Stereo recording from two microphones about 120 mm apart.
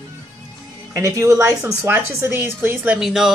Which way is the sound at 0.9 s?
25° right (ahead or behind).